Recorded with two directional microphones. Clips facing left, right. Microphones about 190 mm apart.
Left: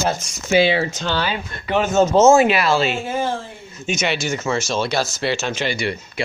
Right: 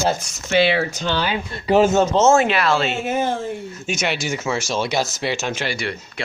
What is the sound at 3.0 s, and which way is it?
Speech, 20° right (ahead or behind).